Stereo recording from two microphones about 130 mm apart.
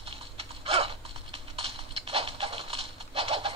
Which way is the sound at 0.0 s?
45° right (ahead or behind).